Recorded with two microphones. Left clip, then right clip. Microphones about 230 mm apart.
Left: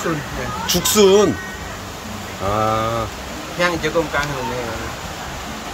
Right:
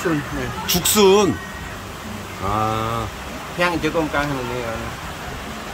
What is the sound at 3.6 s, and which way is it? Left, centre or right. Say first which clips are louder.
Speech: left 1 dB; right.